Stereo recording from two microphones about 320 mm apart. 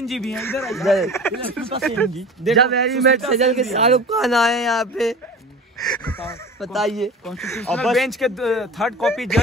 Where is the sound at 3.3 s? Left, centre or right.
Centre.